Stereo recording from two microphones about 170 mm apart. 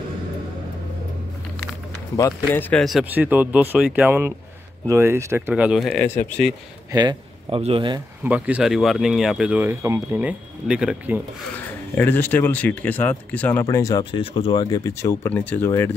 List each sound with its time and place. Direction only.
2.1 s speech: 20° left (ahead or behind)
2.7 s speech: centre (ahead or behind)
6.0 s speech: 10° left (ahead or behind)
6.9 s speech: 25° right (ahead or behind)
8.2 s speech: 10° right (ahead or behind)
12.0 s speech: 10° left (ahead or behind)
14.1 s speech: 35° left (ahead or behind); by 15.9 s 15° left (ahead or behind)